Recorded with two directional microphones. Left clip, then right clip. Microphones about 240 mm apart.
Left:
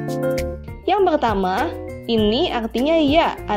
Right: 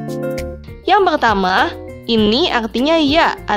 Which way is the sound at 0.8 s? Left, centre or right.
Centre.